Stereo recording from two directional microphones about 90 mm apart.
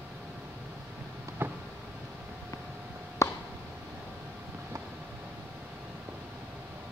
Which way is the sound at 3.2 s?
35° left (ahead or behind).